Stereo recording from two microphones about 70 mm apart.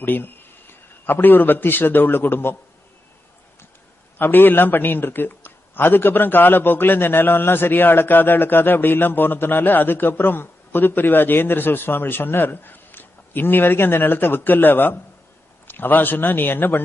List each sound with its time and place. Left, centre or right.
0.0 s a man's voice: left
4.2 s a man's voice: left